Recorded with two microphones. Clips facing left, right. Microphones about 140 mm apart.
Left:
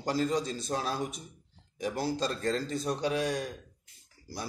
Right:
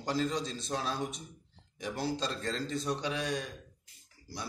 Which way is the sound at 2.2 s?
40° left (ahead or behind).